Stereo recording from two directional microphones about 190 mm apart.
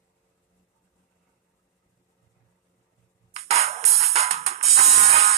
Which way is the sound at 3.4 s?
35° right (ahead or behind).